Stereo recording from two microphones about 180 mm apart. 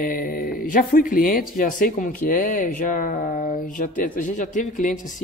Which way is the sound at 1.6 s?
50° left (ahead or behind).